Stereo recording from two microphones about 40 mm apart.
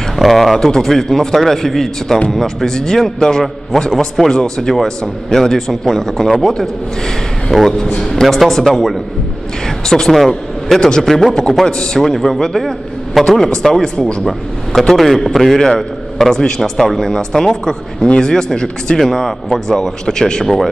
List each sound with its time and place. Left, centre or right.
0.1 s speech: centre
7.5 s a man's voice: centre